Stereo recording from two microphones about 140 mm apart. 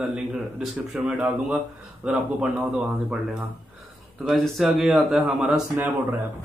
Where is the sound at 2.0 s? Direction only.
5° right (ahead or behind).